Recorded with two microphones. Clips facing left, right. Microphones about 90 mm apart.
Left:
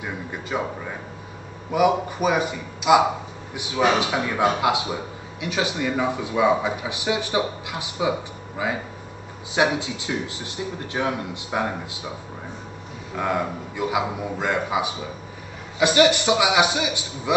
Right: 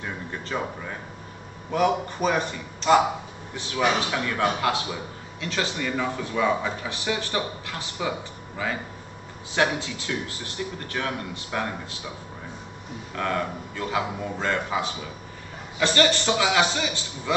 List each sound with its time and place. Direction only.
0.0 s a sound: 10° left (ahead or behind)
1.7 s speech: 10° left (ahead or behind)
13.1 s speech: 15° left (ahead or behind)